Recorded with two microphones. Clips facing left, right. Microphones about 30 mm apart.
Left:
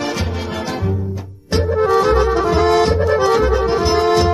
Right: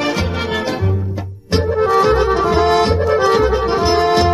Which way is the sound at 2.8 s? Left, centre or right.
Right.